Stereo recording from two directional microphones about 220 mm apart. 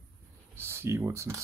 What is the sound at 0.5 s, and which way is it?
Speech, 10° right (ahead or behind).